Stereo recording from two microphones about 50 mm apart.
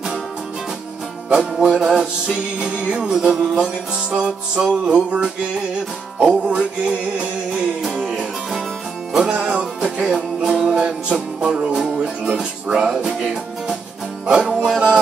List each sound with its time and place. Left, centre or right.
1.3 s music: centre
5.1 s music: right
7.9 s music: centre
9.2 s music: right